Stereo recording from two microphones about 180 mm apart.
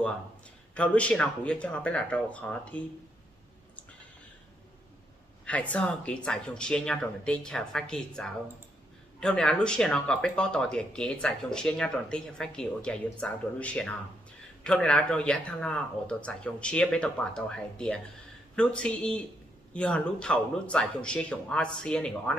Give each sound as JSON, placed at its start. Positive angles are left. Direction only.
{"t": 0.7, "sound": "speech", "side_deg": 5}
{"t": 5.4, "sound": "speech", "side_deg": 5}